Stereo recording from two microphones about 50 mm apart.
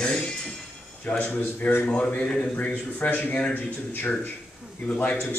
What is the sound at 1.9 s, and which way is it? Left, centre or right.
Speech, left.